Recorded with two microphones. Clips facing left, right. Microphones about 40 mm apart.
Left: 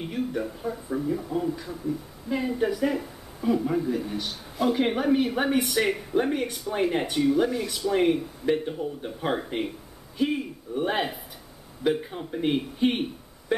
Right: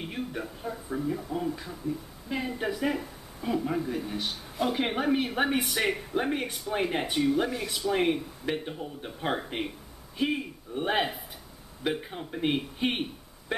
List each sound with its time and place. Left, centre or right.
0.0 s a man's voice: centre